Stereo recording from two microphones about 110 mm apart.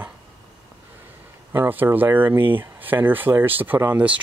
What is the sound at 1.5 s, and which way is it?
Speech, 20° right (ahead or behind).